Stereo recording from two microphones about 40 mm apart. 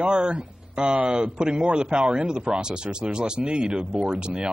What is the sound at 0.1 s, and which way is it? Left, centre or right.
Speech, right.